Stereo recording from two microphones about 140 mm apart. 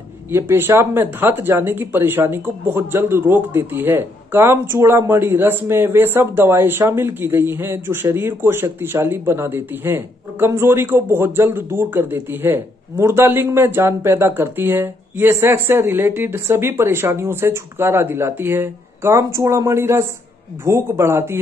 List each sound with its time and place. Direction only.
0.3 s speech: 15° right (ahead or behind)